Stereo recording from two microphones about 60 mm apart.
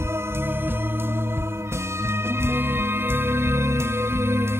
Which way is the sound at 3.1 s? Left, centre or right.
Right.